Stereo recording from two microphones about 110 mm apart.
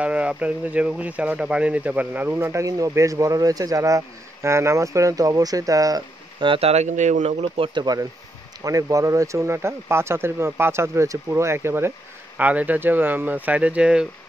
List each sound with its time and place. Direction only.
0.0 s speech: 10° right (ahead or behind); by 6.0 s 30° right (ahead or behind)
6.4 s speech: 50° right (ahead or behind)
6.7 s speech: 90° right; by 7.8 s 55° right (ahead or behind)
7.8 s speech: 35° right (ahead or behind); by 14.0 s 10° right (ahead or behind)